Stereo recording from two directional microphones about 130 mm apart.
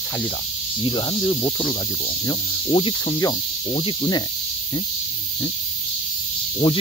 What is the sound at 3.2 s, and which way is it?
Speech, 30° left (ahead or behind).